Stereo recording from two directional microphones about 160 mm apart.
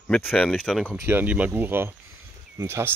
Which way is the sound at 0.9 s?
15° right (ahead or behind).